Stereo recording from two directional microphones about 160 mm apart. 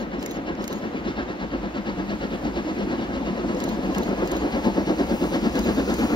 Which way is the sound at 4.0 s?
30° left (ahead or behind).